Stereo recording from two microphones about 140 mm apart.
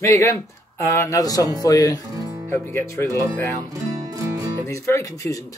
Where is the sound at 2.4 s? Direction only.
15° left (ahead or behind).